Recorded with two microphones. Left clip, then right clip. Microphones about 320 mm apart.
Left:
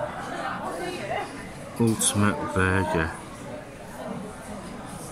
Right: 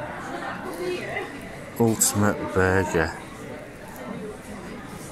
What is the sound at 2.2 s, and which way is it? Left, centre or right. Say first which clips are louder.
Speech: right 3 dB; centre.